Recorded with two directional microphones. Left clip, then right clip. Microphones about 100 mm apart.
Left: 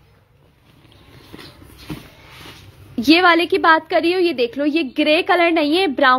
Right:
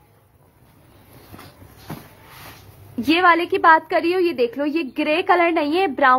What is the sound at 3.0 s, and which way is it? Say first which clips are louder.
A woman's voice: left 3 dB; 40° left (ahead or behind).